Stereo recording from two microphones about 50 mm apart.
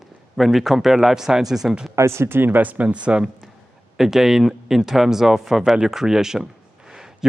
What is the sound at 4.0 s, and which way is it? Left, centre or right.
A man's voice, centre.